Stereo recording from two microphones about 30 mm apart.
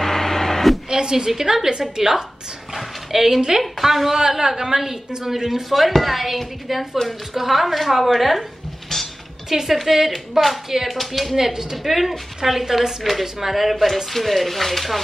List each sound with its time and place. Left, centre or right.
0.0 s printer: centre
0.8 s a sound: right
1.4 s a woman's voice: centre
2.7 s dog: centre
3.8 s speech: centre
4.2 s a woman's voice: centre
8.9 s music: centre
9.5 s a woman's voice: centre
11.3 s a woman's voice: centre